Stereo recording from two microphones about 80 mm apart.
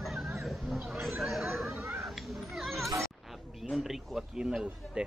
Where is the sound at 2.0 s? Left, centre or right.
Centre.